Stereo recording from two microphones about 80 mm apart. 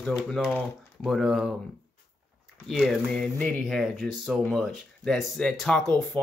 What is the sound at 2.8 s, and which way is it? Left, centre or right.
Speech, centre.